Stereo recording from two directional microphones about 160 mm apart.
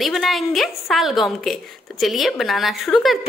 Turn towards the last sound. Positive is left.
turn(degrees=0)  # may be behind; listen again after turning